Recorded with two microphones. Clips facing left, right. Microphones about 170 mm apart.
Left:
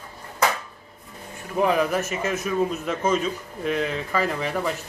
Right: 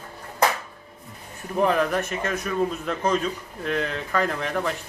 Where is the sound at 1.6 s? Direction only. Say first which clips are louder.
Even; 5° left (ahead or behind).